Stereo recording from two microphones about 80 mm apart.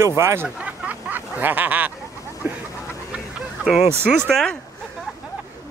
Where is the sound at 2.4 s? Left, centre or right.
Right.